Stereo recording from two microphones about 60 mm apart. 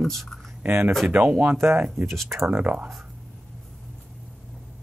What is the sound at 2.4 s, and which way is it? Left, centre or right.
Speech, right.